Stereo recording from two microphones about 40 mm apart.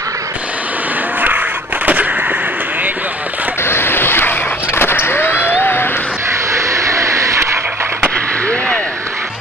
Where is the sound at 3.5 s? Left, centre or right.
Left.